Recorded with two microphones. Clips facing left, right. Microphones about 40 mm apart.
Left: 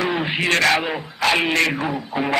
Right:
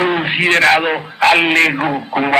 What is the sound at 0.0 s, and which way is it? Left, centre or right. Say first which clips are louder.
A man's voice: right 6 dB; right.